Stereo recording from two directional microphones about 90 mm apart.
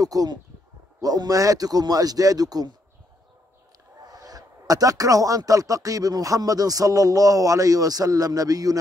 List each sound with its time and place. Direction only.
0.0 s speech: 45° right (ahead or behind)
4.0 s speech: 45° right (ahead or behind)